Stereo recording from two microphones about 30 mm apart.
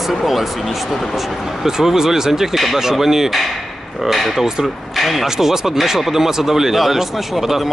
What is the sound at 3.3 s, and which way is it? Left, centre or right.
Speech, centre.